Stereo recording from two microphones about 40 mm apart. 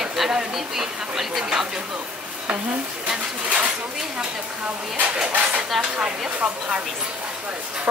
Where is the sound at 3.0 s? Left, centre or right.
Right.